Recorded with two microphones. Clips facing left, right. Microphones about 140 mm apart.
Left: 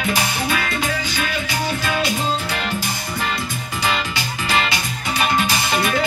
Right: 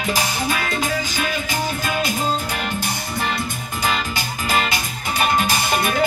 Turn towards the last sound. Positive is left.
turn(degrees=-45)  # may be behind; listen again after turning